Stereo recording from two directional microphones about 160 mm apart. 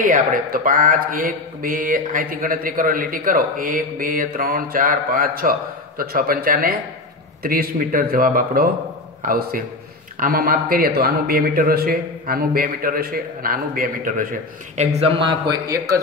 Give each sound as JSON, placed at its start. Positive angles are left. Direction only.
{"t": 0.0, "sound": "speech", "side_deg": -60}
{"t": 14.8, "sound": "speech", "side_deg": -40}